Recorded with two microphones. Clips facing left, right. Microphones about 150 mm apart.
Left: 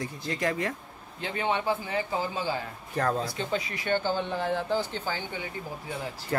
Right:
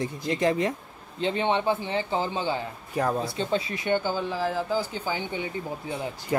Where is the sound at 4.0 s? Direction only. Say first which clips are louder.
Right 1 dB; 5° right (ahead or behind).